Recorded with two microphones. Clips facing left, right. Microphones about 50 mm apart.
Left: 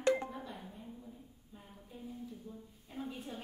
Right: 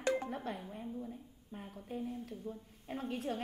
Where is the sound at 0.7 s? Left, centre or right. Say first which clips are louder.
Right 6 dB; right.